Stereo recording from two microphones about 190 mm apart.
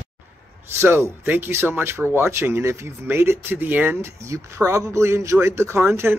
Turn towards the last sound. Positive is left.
turn(degrees=-10)  # may be behind; listen again after turning